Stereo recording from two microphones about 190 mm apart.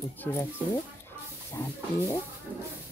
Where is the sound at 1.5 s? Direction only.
15° left (ahead or behind).